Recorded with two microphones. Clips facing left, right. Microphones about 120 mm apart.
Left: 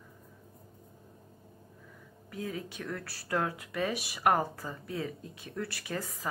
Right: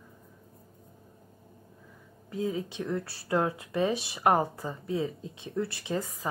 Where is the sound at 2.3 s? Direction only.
25° right (ahead or behind).